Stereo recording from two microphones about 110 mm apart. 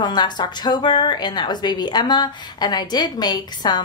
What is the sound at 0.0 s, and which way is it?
A woman's voice, 40° left (ahead or behind).